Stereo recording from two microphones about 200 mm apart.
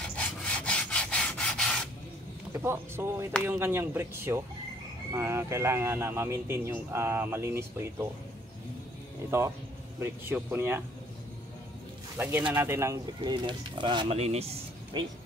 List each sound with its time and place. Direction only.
0.0 s rub: 5° left (ahead or behind)
2.6 s speech: 15° right (ahead or behind)
9.3 s speech: 15° right (ahead or behind)
12.2 s speech: 10° right (ahead or behind); by 15.0 s 30° right (ahead or behind)